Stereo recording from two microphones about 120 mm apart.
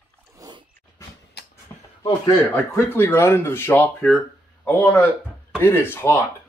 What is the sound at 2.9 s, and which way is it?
Speech, 20° left (ahead or behind).